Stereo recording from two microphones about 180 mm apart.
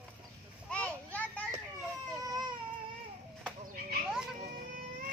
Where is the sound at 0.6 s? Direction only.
5° left (ahead or behind).